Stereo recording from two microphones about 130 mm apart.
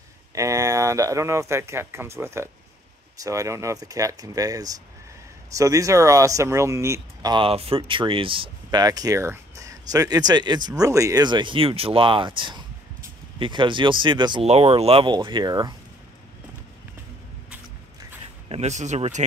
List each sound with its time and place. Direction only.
0.3 s speech: 25° right (ahead or behind)
7.4 s speech: 50° right (ahead or behind)
8.6 s speech: 30° right (ahead or behind)
14.4 s speech: 50° right (ahead or behind)
15.0 s speech: 35° right (ahead or behind)
18.5 s speech: 60° right (ahead or behind)